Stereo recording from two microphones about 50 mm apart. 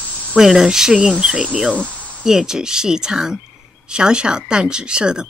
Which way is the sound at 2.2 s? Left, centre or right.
Centre.